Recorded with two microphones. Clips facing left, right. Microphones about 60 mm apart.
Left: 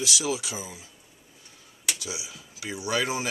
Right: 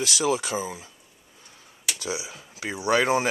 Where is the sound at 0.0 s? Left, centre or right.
Right.